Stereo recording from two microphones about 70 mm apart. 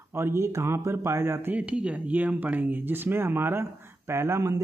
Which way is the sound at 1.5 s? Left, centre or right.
Centre.